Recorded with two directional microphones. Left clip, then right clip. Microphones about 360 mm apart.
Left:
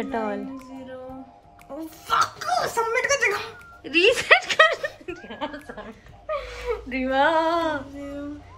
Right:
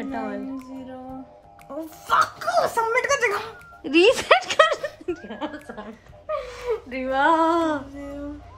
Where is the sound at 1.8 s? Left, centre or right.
Centre.